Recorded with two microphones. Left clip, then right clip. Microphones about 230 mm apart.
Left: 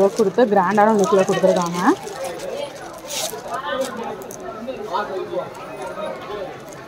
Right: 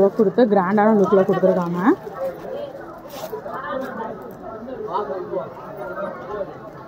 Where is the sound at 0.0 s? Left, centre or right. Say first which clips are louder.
Even; centre.